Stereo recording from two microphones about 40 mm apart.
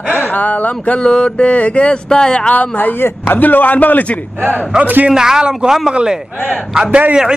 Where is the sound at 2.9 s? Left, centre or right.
Left.